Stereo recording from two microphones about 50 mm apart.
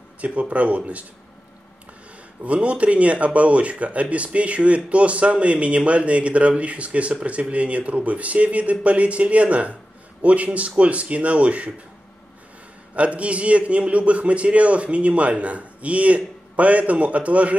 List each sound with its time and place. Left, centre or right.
0.2 s speech: right
2.4 s speech: right
12.9 s speech: right